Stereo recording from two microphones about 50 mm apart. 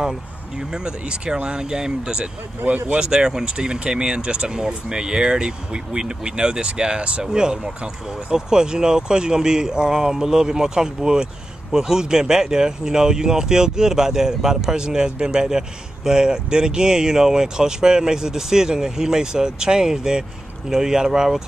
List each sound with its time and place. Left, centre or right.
0.0 s speech: centre